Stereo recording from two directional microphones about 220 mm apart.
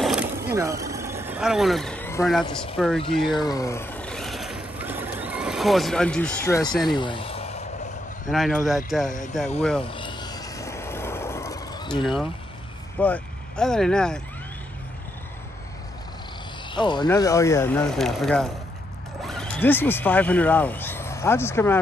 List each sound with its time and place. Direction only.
0.0 s a sound: 5° right (ahead or behind)
2.8 s speech: centre (ahead or behind)
3.3 s vehicle: 15° left (ahead or behind)
6.7 s speech: centre (ahead or behind)
7.0 s a sound: 25° left (ahead or behind)
8.3 s speech: centre (ahead or behind)
9.8 s a sound: 20° left (ahead or behind)
12.0 s speech: centre (ahead or behind)
16.7 s speech: 20° left (ahead or behind)